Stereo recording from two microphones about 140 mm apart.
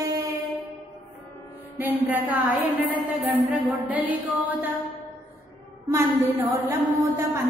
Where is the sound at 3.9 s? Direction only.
10° right (ahead or behind).